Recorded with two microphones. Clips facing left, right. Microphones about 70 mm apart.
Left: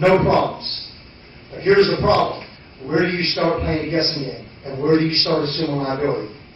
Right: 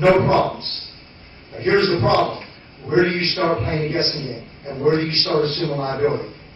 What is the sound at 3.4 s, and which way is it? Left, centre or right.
A man's voice, centre.